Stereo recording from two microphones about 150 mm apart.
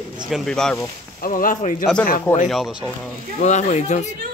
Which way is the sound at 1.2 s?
65° left (ahead or behind).